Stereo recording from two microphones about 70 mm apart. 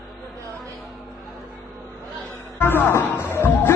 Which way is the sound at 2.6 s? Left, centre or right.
Left.